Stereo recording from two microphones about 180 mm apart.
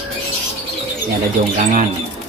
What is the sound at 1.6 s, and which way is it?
Speech, 45° right (ahead or behind).